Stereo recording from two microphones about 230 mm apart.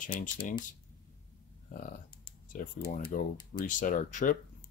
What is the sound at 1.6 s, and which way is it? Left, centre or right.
Typing, left.